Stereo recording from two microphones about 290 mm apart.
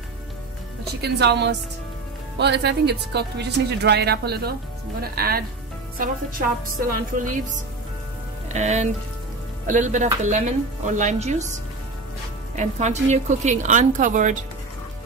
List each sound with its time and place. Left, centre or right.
1.0 s a woman's voice: right